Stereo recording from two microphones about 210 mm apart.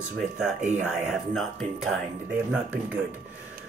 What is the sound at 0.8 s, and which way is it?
Speech, centre (ahead or behind).